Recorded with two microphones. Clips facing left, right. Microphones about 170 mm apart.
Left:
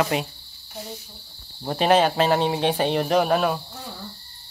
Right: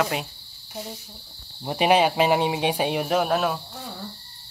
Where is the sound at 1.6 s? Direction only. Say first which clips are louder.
Left 1 dB; 10° right (ahead or behind).